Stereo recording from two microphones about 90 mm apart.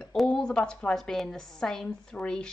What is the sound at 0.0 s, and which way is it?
A woman's voice, 5° left (ahead or behind).